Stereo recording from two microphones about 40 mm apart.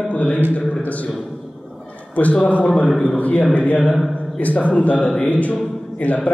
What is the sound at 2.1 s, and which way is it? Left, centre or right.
A man's voice, left.